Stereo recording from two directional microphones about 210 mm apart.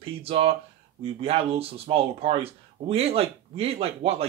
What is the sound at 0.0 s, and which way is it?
Speech, 25° right (ahead or behind).